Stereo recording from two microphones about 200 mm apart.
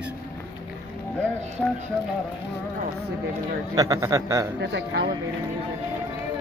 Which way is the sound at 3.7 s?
15° right (ahead or behind).